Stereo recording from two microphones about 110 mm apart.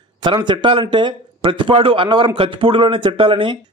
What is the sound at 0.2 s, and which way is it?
Speech, 45° right (ahead or behind).